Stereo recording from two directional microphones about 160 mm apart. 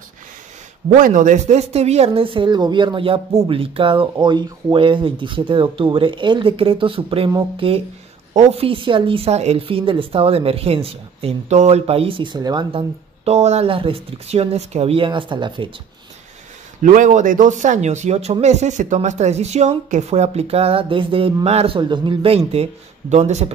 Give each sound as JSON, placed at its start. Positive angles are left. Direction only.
{"t": 0.9, "sound": "speech", "side_deg": -55}
{"t": 13.2, "sound": "speech", "side_deg": -45}
{"t": 16.8, "sound": "speech", "side_deg": -55}